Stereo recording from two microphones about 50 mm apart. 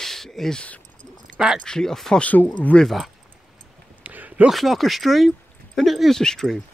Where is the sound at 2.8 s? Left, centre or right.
Centre.